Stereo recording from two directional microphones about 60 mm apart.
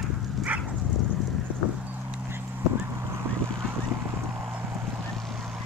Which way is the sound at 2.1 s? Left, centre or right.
Right.